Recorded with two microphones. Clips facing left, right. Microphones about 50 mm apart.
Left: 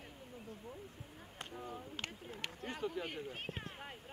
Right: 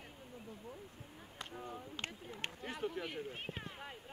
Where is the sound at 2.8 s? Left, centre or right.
Right.